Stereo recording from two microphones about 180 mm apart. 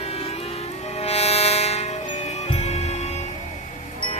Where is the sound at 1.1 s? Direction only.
35° left (ahead or behind).